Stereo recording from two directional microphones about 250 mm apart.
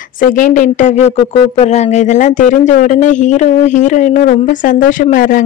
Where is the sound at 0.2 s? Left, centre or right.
Left.